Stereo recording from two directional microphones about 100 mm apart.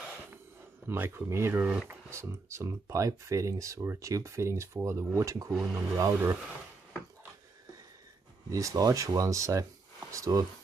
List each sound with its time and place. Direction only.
0.8 s speech: 20° right (ahead or behind)
5.5 s speech: 15° right (ahead or behind)
5.9 s speech: 30° right (ahead or behind)
8.5 s speech: 35° right (ahead or behind)